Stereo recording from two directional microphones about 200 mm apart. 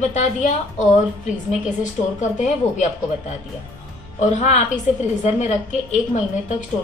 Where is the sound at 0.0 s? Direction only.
35° left (ahead or behind).